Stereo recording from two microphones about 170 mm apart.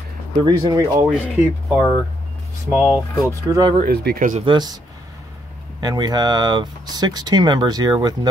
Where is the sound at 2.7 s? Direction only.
10° right (ahead or behind).